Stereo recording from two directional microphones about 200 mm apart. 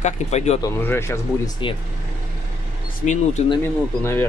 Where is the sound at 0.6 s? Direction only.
10° left (ahead or behind).